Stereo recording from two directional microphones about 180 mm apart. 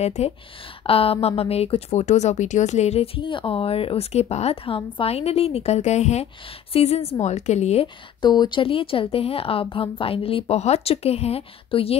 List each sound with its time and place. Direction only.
0.0 s speech: 35° left (ahead or behind)